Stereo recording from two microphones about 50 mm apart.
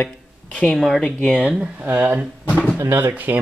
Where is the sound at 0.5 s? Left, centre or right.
Left.